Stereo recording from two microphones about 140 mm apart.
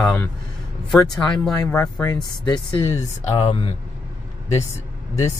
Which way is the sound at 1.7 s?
20° left (ahead or behind).